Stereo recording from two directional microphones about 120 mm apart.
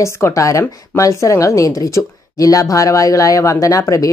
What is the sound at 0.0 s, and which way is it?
A woman's voice, 25° left (ahead or behind).